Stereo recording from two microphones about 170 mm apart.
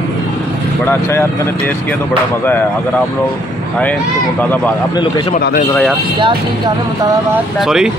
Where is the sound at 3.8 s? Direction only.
10° left (ahead or behind).